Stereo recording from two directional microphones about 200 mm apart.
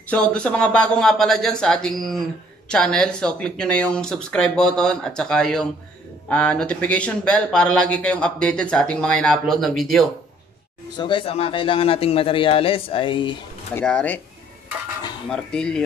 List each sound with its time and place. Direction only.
0.0 s speech: 5° left (ahead or behind)
11.0 s a man's voice: 25° left (ahead or behind)
13.7 s speech: 5° left (ahead or behind)
15.2 s speech: 5° left (ahead or behind)